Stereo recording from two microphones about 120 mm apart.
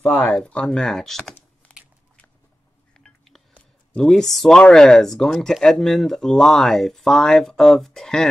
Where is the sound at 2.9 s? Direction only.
5° left (ahead or behind).